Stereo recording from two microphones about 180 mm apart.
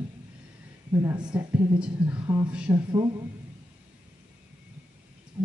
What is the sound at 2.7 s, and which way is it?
Speech, 25° right (ahead or behind).